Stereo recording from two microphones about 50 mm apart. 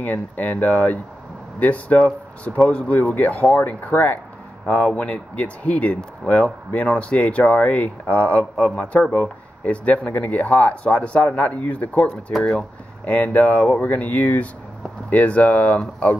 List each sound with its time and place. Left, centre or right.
0.0 s speech: left; by 3.0 s centre
3.0 s speech: left